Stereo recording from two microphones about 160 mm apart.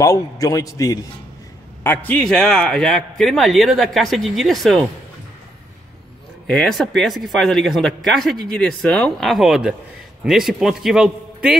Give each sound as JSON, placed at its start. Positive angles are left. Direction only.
{"t": 0.0, "sound": "a man's voice", "side_deg": 20}
{"t": 6.5, "sound": "a man's voice", "side_deg": 0}